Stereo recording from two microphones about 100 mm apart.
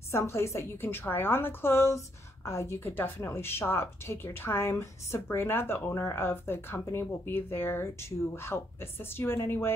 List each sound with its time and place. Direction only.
0.1 s speech: 25° left (ahead or behind)